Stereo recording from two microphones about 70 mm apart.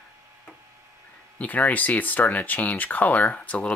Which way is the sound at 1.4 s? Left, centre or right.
Left.